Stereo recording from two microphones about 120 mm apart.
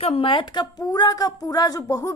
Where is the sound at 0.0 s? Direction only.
50° left (ahead or behind).